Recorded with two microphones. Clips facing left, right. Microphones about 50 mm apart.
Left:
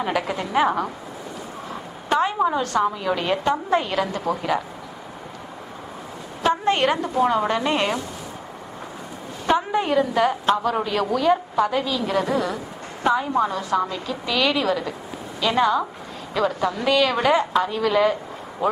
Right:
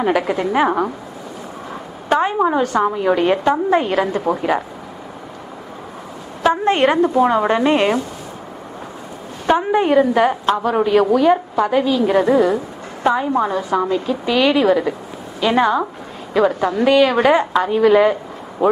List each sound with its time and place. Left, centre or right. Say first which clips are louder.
0.0 s a woman's voice: right 7 dB; centre
2.0 s a woman's voice: right 4 dB; right
6.4 s a woman's voice: right 5 dB; right
9.5 s a woman's voice: right 6 dB; right